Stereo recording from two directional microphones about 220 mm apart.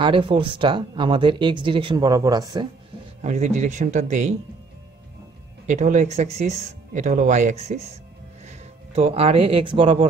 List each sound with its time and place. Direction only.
0.0 s speech: 20° right (ahead or behind)
3.2 s speech: 30° right (ahead or behind)
5.7 s speech: 35° right (ahead or behind)